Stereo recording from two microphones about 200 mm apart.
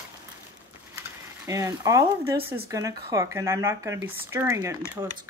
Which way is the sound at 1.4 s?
15° right (ahead or behind).